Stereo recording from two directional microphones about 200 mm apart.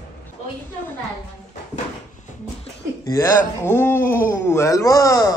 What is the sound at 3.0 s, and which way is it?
A man's voice, 15° left (ahead or behind).